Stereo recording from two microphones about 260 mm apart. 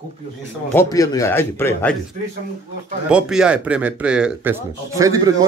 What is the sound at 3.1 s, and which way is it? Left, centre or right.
Speech, centre.